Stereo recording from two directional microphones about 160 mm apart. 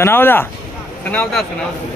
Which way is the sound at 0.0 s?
15° left (ahead or behind).